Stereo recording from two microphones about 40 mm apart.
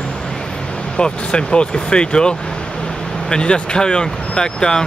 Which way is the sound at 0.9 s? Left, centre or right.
Left.